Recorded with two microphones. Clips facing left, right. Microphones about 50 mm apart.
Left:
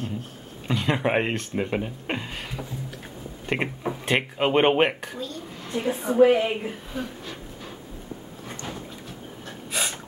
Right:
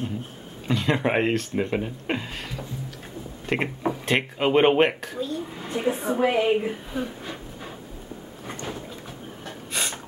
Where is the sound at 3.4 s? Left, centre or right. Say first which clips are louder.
Right 1 dB; centre.